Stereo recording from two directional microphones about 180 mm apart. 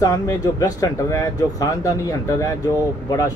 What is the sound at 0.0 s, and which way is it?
Speech, 20° left (ahead or behind).